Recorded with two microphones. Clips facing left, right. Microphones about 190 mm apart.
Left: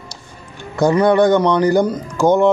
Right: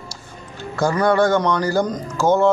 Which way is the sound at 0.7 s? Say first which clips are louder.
Left 4 dB; 20° left (ahead or behind).